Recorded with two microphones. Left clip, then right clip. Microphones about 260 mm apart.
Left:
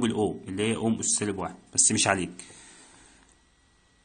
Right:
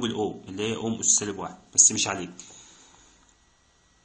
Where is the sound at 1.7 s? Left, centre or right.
Left.